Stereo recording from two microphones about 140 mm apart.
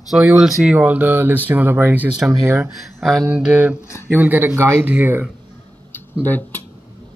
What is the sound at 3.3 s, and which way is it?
Speech, 10° right (ahead or behind).